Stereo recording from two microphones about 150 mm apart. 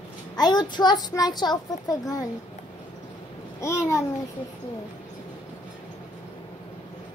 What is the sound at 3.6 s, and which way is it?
Speech, 20° left (ahead or behind).